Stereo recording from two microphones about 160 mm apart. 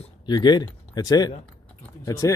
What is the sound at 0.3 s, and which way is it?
Speech, 25° left (ahead or behind).